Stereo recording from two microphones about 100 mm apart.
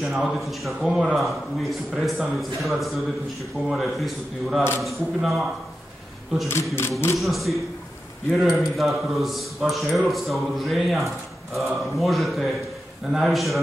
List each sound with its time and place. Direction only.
0.1 s a man's voice: centre (ahead or behind)
6.5 s speech: 25° left (ahead or behind)
7.2 s a man's voice: centre (ahead or behind)